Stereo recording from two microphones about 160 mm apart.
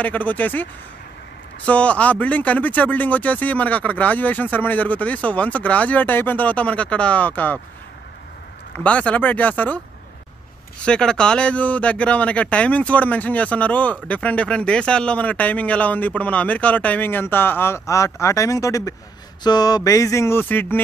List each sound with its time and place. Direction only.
0.0 s speech: 10° left (ahead or behind)
1.7 s speech: 10° left (ahead or behind)
8.7 s speech: 5° left (ahead or behind)
10.9 s speech: 5° left (ahead or behind); by 18.9 s 20° left (ahead or behind)
19.4 s a sound: 25° left (ahead or behind)